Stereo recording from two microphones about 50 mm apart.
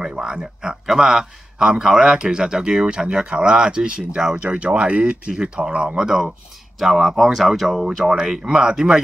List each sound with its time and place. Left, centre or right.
0.0 s a man's voice: centre